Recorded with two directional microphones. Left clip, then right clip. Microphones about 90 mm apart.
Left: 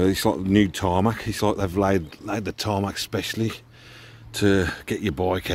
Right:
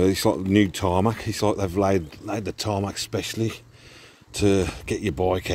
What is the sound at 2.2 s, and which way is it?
Speech, 60° left (ahead or behind).